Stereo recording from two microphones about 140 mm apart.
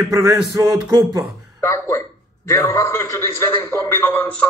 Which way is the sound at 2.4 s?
20° left (ahead or behind).